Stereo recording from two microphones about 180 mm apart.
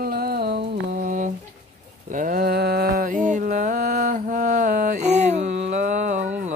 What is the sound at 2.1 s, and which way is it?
Mantra, 50° right (ahead or behind).